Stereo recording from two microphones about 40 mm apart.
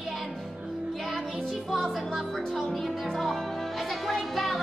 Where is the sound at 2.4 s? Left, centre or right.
Centre.